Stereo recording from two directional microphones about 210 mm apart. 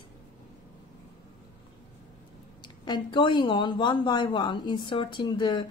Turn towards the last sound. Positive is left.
turn(degrees=20)  # may be behind; listen again after turning